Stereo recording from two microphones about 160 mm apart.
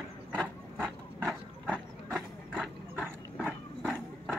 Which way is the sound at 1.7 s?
5° right (ahead or behind).